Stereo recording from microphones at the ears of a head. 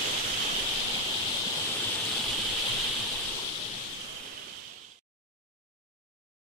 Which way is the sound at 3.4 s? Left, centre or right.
Left.